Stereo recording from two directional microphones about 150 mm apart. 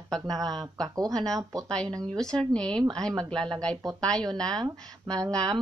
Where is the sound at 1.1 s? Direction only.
5° left (ahead or behind).